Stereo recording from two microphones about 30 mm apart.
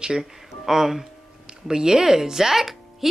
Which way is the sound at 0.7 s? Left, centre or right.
Centre.